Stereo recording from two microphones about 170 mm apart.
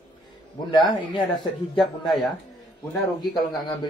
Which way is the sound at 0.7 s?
25° left (ahead or behind).